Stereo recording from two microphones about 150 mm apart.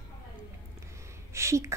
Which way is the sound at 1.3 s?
20° right (ahead or behind).